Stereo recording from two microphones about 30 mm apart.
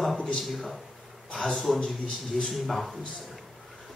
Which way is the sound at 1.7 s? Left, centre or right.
Left.